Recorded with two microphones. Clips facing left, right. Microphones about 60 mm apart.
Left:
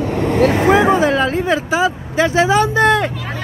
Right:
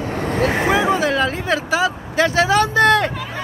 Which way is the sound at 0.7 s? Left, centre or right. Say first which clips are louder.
Left 4 dB; left.